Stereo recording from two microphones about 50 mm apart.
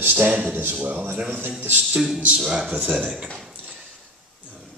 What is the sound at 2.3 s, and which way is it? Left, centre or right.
Speech, centre.